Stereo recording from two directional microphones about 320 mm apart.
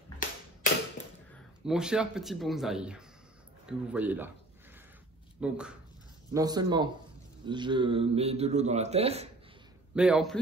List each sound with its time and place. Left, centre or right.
1.0 s a sound: left
1.7 s speech: centre
5.4 s speech: centre
9.9 s speech: centre